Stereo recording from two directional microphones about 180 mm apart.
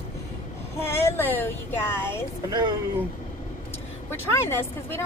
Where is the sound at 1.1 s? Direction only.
10° left (ahead or behind).